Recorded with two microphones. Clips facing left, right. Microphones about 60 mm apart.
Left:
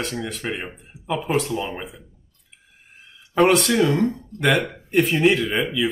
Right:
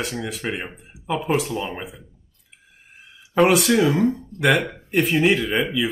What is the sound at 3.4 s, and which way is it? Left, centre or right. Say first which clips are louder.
Speech: even; centre.